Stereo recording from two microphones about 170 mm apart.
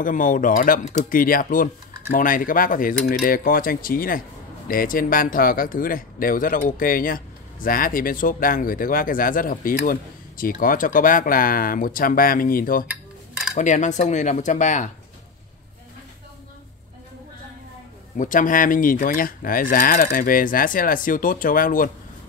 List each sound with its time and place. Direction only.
0.0 s speech: 50° left (ahead or behind)
13.6 s speech: 45° left (ahead or behind)
18.1 s speech: 50° left (ahead or behind)